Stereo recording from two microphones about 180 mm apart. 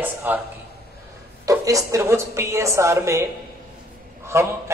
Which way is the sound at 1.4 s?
20° right (ahead or behind).